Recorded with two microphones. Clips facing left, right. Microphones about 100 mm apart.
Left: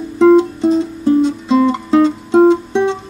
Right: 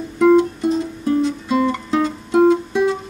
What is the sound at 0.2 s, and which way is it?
Music, 25° left (ahead or behind).